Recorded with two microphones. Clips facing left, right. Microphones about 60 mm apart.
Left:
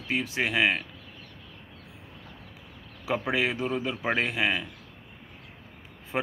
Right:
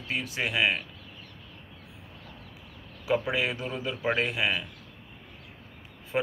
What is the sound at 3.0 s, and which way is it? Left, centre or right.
Speech, left.